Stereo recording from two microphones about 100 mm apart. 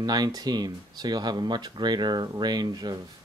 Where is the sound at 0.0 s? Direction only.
45° right (ahead or behind).